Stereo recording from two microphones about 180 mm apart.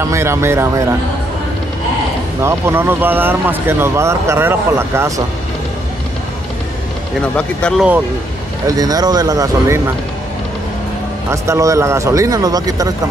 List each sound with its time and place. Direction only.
0.0 s speech: 15° right (ahead or behind)
2.4 s speech: 15° right (ahead or behind)
7.2 s speech: 5° left (ahead or behind)
8.6 s a man's voice: 20° right (ahead or behind)
11.2 s speech: 15° right (ahead or behind)